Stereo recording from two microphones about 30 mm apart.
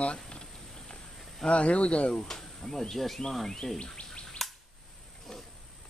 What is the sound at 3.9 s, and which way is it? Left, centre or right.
Bird, left.